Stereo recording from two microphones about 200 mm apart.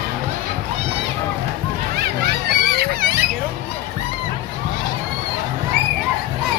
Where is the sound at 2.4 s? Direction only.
55° right (ahead or behind).